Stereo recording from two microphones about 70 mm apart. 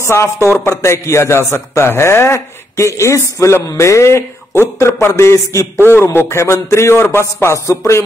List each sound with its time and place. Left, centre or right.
0.0 s a man's voice: left
5.9 s speech: left